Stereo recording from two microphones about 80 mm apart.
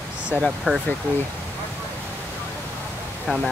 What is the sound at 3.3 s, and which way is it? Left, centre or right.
Speech, centre.